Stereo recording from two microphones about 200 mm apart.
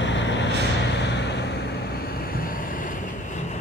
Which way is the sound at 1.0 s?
60° left (ahead or behind).